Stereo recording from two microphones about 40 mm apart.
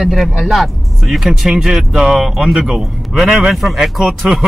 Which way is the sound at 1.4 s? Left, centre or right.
Centre.